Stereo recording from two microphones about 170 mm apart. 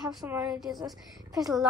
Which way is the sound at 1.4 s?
20° right (ahead or behind).